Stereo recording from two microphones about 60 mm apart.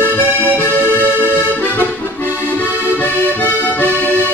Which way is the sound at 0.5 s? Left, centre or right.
Left.